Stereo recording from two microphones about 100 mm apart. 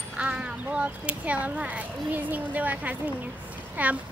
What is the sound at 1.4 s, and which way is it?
Speech, 15° right (ahead or behind).